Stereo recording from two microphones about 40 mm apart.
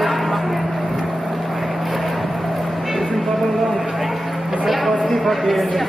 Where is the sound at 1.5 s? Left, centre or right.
Centre.